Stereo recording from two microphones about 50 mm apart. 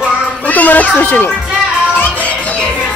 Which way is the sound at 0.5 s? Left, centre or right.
Left.